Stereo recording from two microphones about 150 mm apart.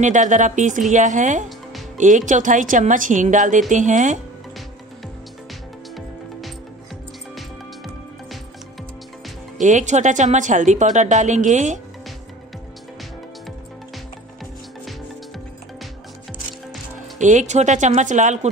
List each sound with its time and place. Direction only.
0.0 s speech: 55° right (ahead or behind)
7.3 s music: centre (ahead or behind)
9.6 s a woman's voice: 55° right (ahead or behind)
17.2 s a woman's voice: 55° right (ahead or behind)